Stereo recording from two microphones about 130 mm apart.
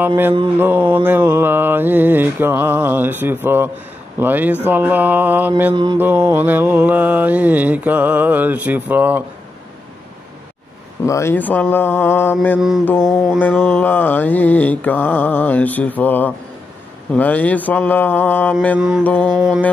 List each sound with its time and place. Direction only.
0.0 s mantra: 15° right (ahead or behind)
11.1 s mantra: 20° left (ahead or behind)
12.5 s mantra: 5° right (ahead or behind)
13.7 s mantra: 15° left (ahead or behind)
18.8 s mantra: 5° right (ahead or behind)